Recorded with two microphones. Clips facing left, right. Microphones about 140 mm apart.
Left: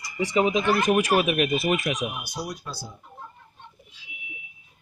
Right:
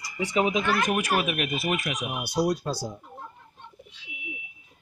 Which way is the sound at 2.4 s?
75° right (ahead or behind).